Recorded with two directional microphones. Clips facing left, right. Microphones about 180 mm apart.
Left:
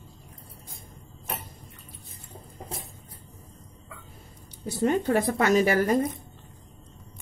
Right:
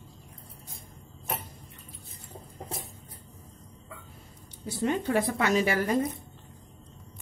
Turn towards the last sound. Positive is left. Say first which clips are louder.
# left 4 dB
turn(degrees=45)  # may be behind; listen again after turning